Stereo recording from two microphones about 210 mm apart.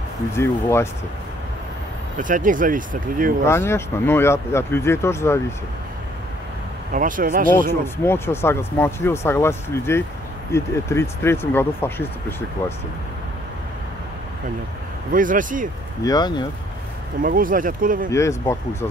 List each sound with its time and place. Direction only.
0.4 s speech: 10° left (ahead or behind)
2.1 s speech: 40° right (ahead or behind)
3.4 s speech: 10° left (ahead or behind)
6.9 s speech: 40° right (ahead or behind)
7.8 s speech: 10° left (ahead or behind)
15.0 s speech: 40° right (ahead or behind)
16.0 s speech: 20° left (ahead or behind)
17.2 s speech: 40° right (ahead or behind)
18.1 s speech: 15° left (ahead or behind)